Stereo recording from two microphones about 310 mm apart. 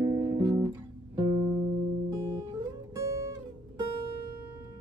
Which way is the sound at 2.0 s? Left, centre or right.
Centre.